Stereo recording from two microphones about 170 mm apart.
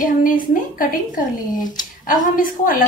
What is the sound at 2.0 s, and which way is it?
Speech, 55° left (ahead or behind).